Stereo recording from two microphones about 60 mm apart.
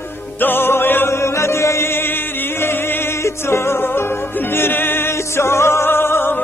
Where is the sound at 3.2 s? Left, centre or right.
Left.